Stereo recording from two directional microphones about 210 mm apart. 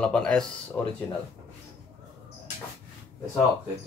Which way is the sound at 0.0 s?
5° left (ahead or behind).